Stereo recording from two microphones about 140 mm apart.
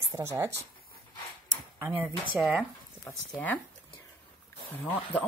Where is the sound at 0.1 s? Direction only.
20° right (ahead or behind).